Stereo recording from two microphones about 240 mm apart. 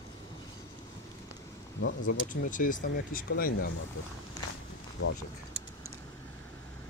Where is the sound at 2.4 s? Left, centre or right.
Left.